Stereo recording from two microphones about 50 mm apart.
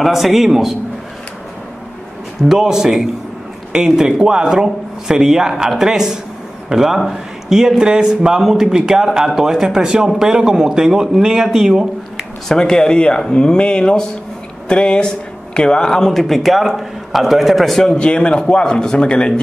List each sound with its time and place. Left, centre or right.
0.0 s a man's voice: centre
2.4 s a man's voice: centre
12.4 s a man's voice: centre